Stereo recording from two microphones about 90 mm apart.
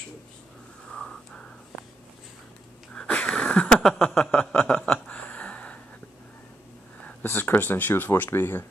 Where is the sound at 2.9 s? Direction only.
10° left (ahead or behind).